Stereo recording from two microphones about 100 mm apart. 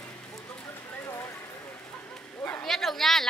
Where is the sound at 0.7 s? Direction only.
25° left (ahead or behind).